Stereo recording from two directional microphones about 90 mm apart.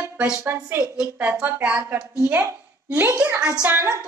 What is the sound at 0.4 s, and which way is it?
Speech, 25° right (ahead or behind).